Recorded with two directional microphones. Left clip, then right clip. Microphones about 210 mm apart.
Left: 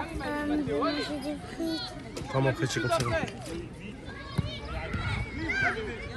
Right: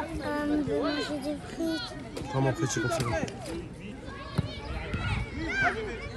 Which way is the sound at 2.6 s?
15° right (ahead or behind).